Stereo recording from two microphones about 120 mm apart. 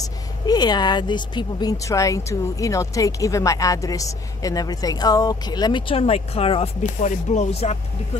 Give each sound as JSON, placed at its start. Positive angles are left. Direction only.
{"t": 0.5, "sound": "speech", "side_deg": 35}
{"t": 7.0, "sound": "speech", "side_deg": 85}